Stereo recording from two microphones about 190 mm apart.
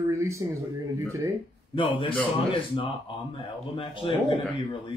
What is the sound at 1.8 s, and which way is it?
Speech, 25° left (ahead or behind).